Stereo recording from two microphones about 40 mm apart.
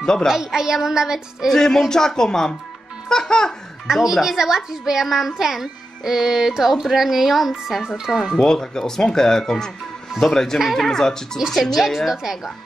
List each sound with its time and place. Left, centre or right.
0.0 s a woman's voice: centre
0.3 s a woman's voice: centre
1.5 s speech: centre
3.8 s a woman's voice: centre
8.2 s speech: centre
11.8 s a woman's voice: centre